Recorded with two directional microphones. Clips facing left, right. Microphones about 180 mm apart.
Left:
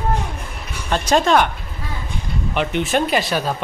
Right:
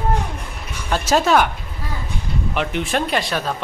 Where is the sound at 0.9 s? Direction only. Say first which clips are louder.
Left 1 dB; 5° right (ahead or behind).